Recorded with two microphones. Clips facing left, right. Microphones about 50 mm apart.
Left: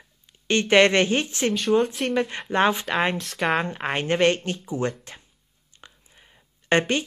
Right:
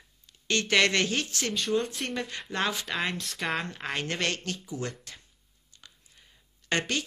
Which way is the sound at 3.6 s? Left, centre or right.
Left.